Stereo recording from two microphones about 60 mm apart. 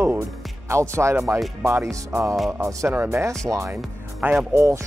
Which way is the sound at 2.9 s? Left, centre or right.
Right.